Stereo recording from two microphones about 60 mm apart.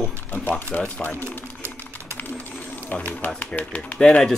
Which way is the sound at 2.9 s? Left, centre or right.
Left.